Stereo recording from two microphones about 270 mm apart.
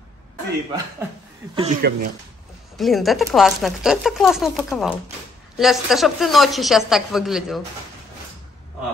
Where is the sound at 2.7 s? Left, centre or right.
Centre.